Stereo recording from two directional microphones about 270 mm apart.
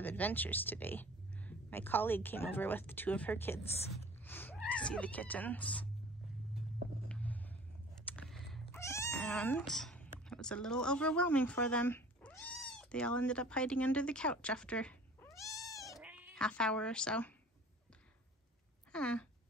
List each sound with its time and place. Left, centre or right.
0.0 s speech: centre
7.1 s vehicle: centre
8.0 s cat: centre
16.0 s speech: centre
18.9 s speech: centre